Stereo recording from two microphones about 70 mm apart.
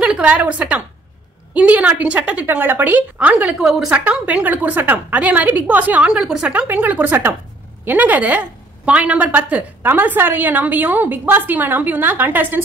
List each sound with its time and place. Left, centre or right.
0.0 s a woman's voice: centre
3.4 s a woman's voice: centre
3.9 s a woman's voice: centre
6.2 s a woman's voice: centre
6.7 s a woman's voice: right